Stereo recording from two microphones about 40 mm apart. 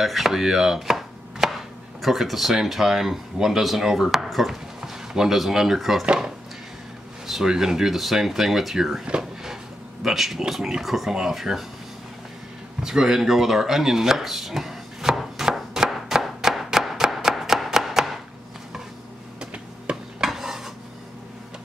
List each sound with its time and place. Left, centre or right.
0.0 s chopping: centre
2.0 s speech: centre
7.4 s speech: centre
10.0 s speech: centre
12.8 s a sound: centre
20.2 s dishes: centre